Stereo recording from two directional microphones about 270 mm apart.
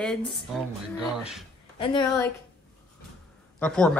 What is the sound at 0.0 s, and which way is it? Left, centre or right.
Speech, centre.